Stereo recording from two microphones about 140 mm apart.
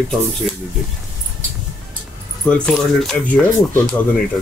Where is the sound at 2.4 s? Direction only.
5° left (ahead or behind).